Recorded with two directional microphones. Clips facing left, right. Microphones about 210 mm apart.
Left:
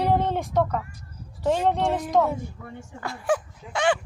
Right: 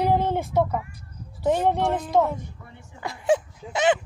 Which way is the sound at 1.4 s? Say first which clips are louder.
Right 1 dB; 15° right (ahead or behind).